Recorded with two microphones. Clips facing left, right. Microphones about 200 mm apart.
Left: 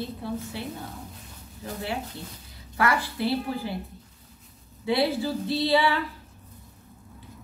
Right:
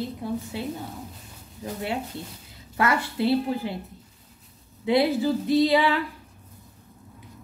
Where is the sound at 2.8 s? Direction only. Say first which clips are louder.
Right 2 dB; 25° right (ahead or behind).